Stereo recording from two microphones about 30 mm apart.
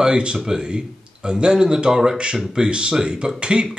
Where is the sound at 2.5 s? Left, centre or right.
Right.